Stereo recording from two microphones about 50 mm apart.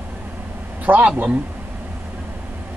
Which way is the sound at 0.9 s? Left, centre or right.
Right.